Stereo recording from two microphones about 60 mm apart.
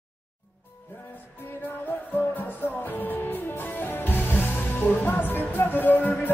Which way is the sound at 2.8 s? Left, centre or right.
Left.